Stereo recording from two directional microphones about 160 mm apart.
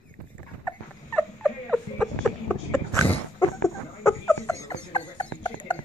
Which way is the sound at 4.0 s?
15° left (ahead or behind).